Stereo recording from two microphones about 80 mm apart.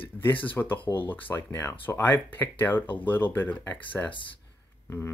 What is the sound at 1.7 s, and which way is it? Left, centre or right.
Speech, left.